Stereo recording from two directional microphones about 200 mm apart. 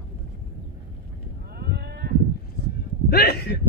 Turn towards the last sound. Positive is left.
turn(degrees=50)  # may be behind; listen again after turning